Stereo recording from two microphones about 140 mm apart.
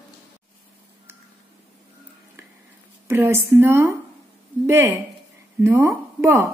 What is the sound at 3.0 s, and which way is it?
A woman's voice, 15° right (ahead or behind).